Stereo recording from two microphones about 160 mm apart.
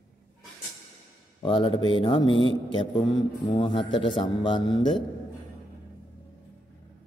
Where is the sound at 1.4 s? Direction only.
35° left (ahead or behind).